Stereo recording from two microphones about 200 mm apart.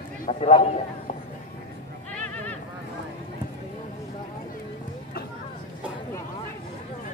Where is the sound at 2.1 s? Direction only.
5° left (ahead or behind).